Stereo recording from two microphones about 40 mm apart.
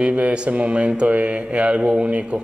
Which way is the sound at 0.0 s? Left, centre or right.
Right.